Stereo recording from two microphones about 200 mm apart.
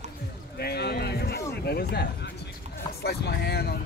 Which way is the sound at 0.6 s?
55° left (ahead or behind).